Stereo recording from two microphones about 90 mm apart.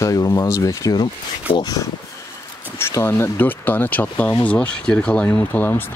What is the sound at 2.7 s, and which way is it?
Speech, 30° left (ahead or behind).